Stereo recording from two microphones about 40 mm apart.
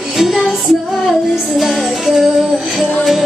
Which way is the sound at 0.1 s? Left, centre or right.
Centre.